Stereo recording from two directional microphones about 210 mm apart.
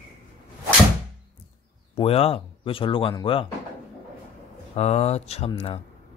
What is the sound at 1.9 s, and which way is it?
Speech, 25° left (ahead or behind).